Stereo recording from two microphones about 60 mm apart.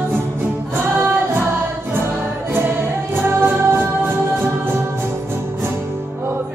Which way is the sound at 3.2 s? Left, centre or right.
Right.